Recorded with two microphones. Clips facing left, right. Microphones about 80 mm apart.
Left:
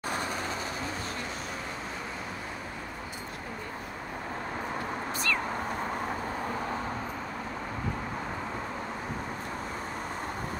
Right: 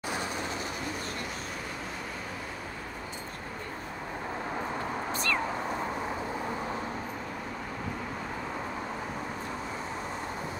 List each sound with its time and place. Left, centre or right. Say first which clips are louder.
5.1 s cat: even; right